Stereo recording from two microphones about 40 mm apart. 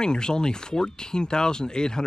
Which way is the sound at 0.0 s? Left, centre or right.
Centre.